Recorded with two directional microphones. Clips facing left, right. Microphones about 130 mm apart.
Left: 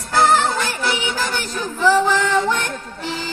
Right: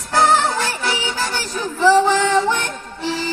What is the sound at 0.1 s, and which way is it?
Music, 25° right (ahead or behind).